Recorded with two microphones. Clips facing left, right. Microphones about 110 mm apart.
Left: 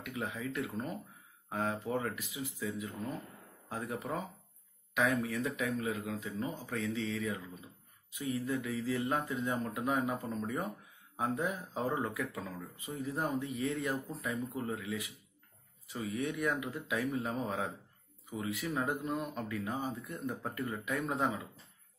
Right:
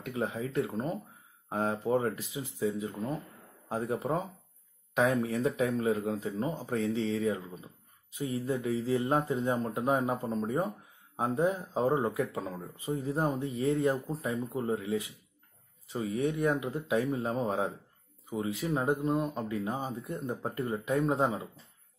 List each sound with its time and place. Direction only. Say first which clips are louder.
0.0 s speech: right 5 dB; 30° right (ahead or behind)